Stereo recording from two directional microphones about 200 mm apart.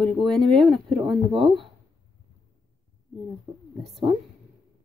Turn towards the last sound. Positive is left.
turn(degrees=0)  # may be behind; listen again after turning